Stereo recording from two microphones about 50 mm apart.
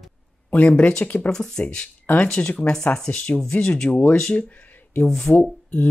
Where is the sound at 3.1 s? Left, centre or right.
Left.